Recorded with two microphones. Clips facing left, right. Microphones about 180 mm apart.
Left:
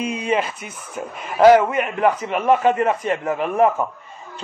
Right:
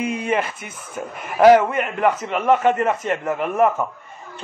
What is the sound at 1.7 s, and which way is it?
A man's voice, 15° left (ahead or behind).